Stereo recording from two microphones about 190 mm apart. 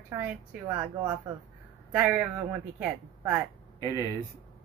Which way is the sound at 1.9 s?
5° right (ahead or behind).